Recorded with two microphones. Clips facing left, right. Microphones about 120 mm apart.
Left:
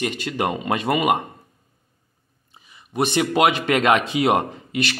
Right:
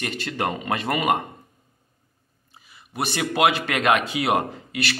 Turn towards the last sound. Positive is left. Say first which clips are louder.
# left 3 dB
turn(degrees=20)  # may be behind; listen again after turning